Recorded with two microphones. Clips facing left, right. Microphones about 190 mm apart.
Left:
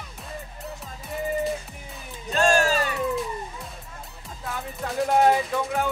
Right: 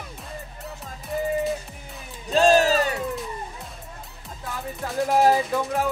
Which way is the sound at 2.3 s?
35° right (ahead or behind).